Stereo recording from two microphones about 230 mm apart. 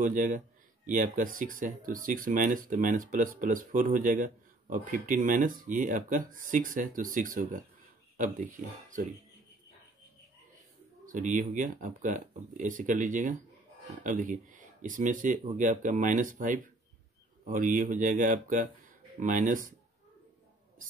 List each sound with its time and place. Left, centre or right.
0.0 s speech: right
11.1 s speech: right